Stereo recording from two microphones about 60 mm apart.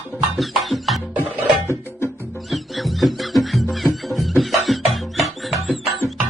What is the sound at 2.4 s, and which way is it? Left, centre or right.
Music, centre.